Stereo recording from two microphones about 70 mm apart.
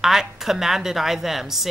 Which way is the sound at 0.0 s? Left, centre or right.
Centre.